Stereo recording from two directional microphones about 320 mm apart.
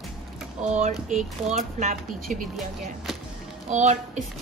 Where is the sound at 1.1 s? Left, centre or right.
Right.